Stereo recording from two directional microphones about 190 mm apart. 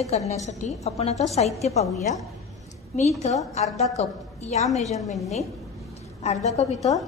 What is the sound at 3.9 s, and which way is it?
A woman's voice, 35° left (ahead or behind).